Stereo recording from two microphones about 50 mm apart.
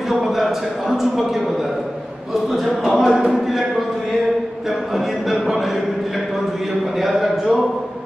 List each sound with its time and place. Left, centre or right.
0.1 s a man's voice: centre
2.5 s a man's voice: centre
4.6 s a man's voice: centre
7.0 s a man's voice: centre